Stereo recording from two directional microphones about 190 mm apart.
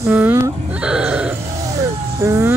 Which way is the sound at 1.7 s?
15° right (ahead or behind).